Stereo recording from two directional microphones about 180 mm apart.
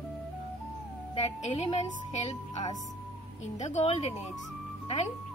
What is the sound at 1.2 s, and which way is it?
Speech, 35° left (ahead or behind).